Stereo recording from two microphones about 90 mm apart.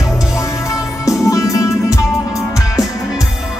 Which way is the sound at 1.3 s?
35° left (ahead or behind).